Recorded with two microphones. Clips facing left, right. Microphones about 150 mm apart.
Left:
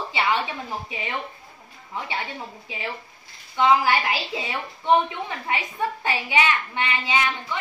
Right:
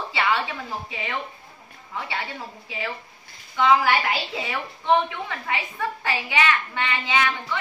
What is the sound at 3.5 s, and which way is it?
A woman's voice, 25° left (ahead or behind).